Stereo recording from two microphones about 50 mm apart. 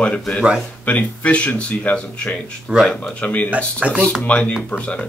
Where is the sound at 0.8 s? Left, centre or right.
Left.